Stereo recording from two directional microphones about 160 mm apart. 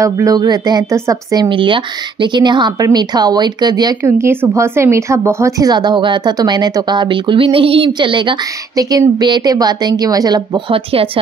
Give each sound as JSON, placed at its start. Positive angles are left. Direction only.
{"t": 0.0, "sound": "speech", "side_deg": -20}
{"t": 10.7, "sound": "speech", "side_deg": -35}